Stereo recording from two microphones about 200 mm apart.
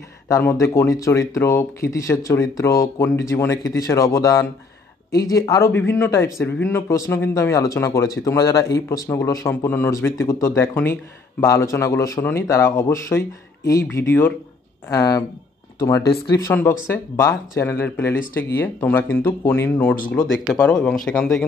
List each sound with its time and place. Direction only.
0.3 s speech: 15° left (ahead or behind)
16.3 s speech: 15° left (ahead or behind)